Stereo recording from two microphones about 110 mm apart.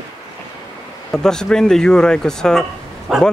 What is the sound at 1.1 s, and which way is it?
Speech, 5° left (ahead or behind).